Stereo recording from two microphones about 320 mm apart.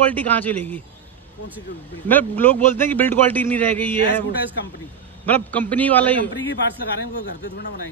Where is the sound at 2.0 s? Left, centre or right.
Centre.